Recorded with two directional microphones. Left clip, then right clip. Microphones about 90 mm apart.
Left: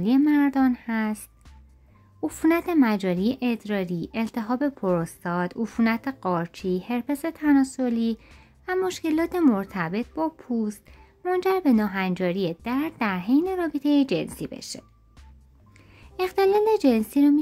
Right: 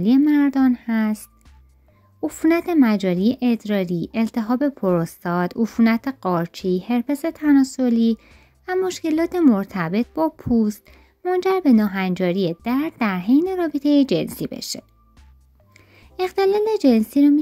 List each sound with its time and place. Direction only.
0.0 s speech: 30° right (ahead or behind)
2.2 s speech: 25° right (ahead or behind); by 11.0 s 45° right (ahead or behind)
11.2 s speech: 25° right (ahead or behind); by 14.9 s 45° right (ahead or behind)
15.9 s speech: 30° right (ahead or behind)